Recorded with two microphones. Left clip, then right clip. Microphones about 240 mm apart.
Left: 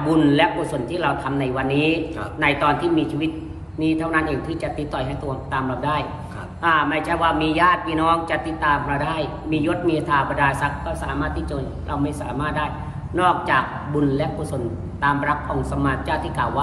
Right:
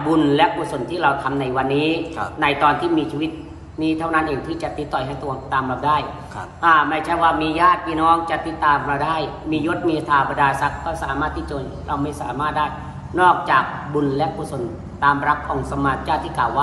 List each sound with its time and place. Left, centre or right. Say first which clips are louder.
0.1 s a man's voice: right 1 dB; centre